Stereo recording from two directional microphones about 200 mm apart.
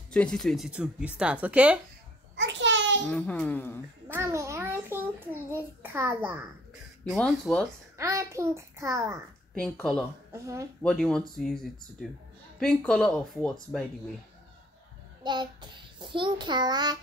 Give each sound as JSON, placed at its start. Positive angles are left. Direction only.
{"t": 0.1, "sound": "speech", "side_deg": 5}
{"t": 2.3, "sound": "babbling", "side_deg": -65}
{"t": 3.1, "sound": "a child's voice", "side_deg": 5}
{"t": 4.1, "sound": "a child's voice", "side_deg": -15}
{"t": 7.1, "sound": "speech", "side_deg": 5}
{"t": 8.0, "sound": "a child's voice", "side_deg": -15}
{"t": 9.5, "sound": "speech", "side_deg": 5}
{"t": 10.3, "sound": "a child's voice", "side_deg": -15}
{"t": 10.8, "sound": "speech", "side_deg": 5}
{"t": 15.2, "sound": "a child's voice", "side_deg": -20}